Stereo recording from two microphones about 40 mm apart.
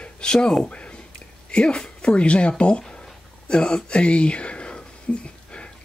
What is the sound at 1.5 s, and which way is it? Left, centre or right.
Speech, left.